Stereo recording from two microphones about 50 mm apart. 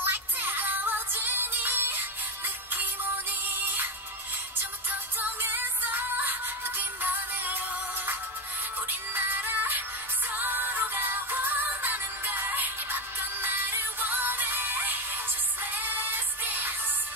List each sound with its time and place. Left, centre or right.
0.0 s music: right
5.4 s music: right